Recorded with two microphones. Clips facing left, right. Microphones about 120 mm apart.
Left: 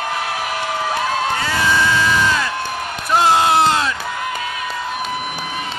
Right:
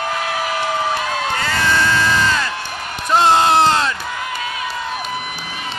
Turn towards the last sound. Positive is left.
turn(degrees=5)  # may be behind; listen again after turning